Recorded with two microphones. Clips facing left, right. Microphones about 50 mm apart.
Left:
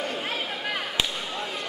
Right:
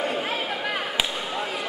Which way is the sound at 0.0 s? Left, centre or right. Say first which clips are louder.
Right 3 dB; centre.